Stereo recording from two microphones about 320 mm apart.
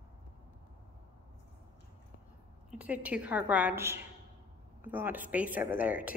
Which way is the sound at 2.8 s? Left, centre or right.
Centre.